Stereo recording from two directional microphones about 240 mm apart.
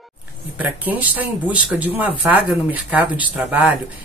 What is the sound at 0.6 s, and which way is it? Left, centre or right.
A woman's voice, centre.